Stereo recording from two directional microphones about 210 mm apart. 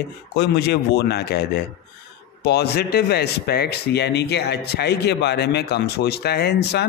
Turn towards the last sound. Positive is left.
turn(degrees=50)  # may be behind; listen again after turning